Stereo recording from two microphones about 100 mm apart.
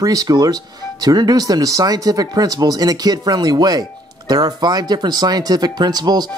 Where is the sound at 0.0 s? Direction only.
40° right (ahead or behind).